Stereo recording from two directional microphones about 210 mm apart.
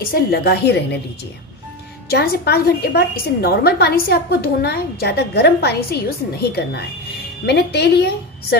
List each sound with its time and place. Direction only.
0.0 s a woman's voice: 45° left (ahead or behind)
2.0 s a woman's voice: 50° left (ahead or behind)